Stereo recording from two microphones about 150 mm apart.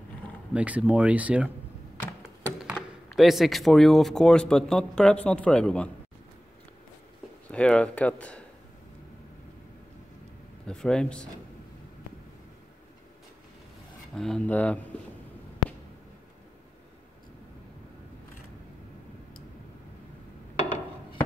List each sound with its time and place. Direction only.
0.5 s speech: 10° right (ahead or behind)
2.6 s speech: centre (ahead or behind)
7.5 s speech: 5° left (ahead or behind)
10.7 s speech: 5° left (ahead or behind)
14.1 s speech: 5° left (ahead or behind)